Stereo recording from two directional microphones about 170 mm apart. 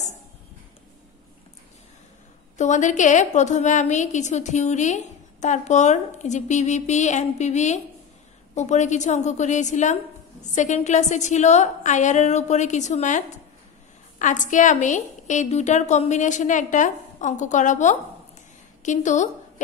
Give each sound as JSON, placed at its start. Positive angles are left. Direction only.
{"t": 2.5, "sound": "a woman's voice", "side_deg": 45}